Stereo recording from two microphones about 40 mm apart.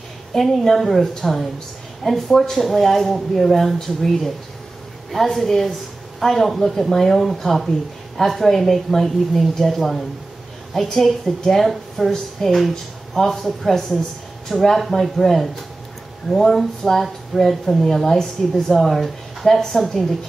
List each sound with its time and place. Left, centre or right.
0.3 s a woman's voice: centre
5.1 s a woman's voice: centre
11.1 s a woman's voice: centre